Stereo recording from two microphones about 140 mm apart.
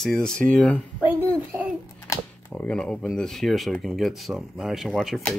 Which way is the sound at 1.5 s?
20° right (ahead or behind).